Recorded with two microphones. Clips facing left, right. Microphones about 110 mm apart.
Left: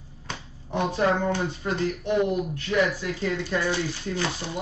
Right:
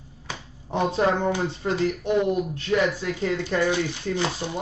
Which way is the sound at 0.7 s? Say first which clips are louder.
Right 1 dB; 20° right (ahead or behind).